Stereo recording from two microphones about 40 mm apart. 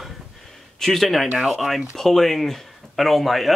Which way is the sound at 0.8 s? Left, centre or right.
Centre.